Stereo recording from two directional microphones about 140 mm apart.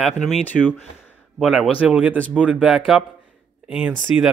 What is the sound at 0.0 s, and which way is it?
Speech, centre (ahead or behind).